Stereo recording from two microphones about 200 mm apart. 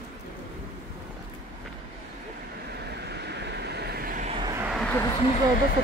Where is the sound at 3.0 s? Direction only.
55° right (ahead or behind).